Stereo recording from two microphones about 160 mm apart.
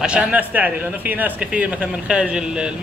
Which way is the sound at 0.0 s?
10° right (ahead or behind).